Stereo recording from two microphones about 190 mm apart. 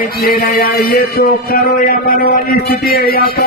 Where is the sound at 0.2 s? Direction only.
50° left (ahead or behind).